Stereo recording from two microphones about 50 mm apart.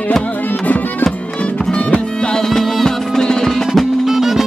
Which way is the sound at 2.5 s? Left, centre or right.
Centre.